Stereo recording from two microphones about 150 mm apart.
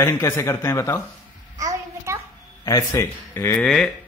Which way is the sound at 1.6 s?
20° right (ahead or behind).